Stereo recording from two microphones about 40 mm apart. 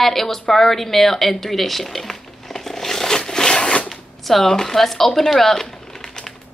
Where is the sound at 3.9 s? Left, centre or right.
Centre.